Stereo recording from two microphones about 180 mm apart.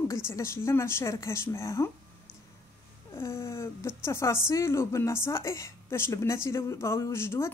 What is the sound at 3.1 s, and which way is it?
Speech, 15° left (ahead or behind).